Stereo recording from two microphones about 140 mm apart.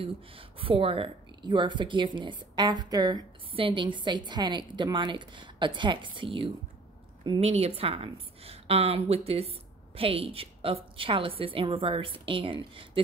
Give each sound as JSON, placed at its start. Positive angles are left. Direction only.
{"t": 0.0, "sound": "a woman's voice", "side_deg": -40}
{"t": 7.2, "sound": "a woman's voice", "side_deg": -50}